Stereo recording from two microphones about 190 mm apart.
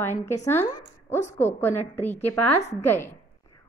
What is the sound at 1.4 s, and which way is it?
A woman's voice, 10° left (ahead or behind).